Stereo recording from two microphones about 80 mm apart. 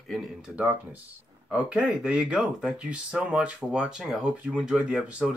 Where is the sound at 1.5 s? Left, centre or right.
Centre.